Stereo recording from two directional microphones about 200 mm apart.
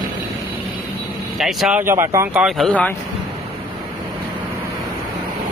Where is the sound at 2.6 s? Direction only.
5° left (ahead or behind).